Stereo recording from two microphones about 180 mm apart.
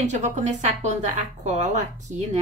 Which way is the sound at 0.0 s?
40° right (ahead or behind).